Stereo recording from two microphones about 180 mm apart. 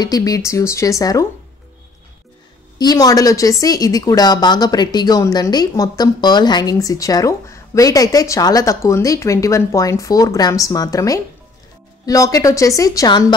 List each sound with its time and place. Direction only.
0.0 s speech: 20° left (ahead or behind)
2.8 s a woman's voice: 20° left (ahead or behind)